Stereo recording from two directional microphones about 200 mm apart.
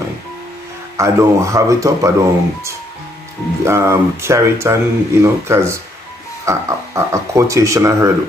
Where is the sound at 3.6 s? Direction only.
15° right (ahead or behind).